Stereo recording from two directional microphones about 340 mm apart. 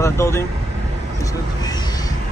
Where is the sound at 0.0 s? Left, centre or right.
Centre.